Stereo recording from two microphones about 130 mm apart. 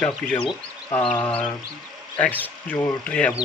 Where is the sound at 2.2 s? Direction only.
15° left (ahead or behind).